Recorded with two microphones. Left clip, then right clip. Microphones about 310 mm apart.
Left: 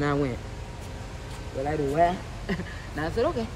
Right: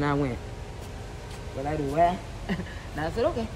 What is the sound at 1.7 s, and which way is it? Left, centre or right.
Speech, centre.